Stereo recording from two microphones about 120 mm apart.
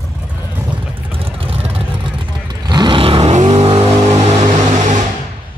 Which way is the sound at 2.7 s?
40° right (ahead or behind).